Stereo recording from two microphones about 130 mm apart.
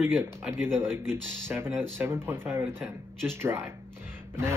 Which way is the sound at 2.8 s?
5° left (ahead or behind).